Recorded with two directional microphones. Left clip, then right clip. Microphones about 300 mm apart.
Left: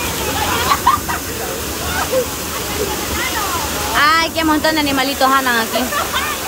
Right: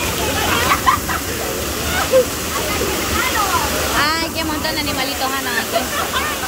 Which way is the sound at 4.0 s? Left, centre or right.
Centre.